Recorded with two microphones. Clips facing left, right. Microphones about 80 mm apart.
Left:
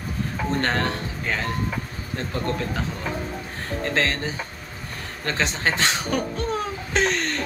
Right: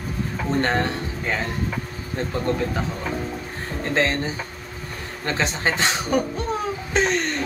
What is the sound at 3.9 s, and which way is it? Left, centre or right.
Speech, right.